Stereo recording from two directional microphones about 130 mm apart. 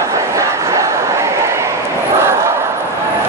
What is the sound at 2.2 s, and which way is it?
Battle cry, 20° right (ahead or behind).